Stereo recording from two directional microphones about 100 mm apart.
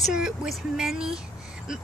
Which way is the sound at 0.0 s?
5° right (ahead or behind).